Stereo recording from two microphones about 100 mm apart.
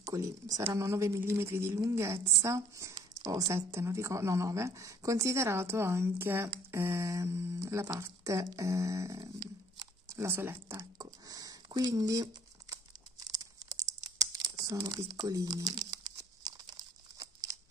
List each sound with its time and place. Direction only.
0.0 s a woman's voice: 35° right (ahead or behind)
13.2 s crumpling: 40° right (ahead or behind)
17.2 s a sound: 35° right (ahead or behind)